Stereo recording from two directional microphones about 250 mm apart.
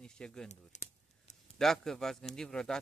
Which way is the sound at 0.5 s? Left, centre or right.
Left.